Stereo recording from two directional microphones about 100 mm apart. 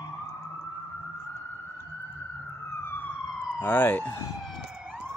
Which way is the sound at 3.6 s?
20° left (ahead or behind).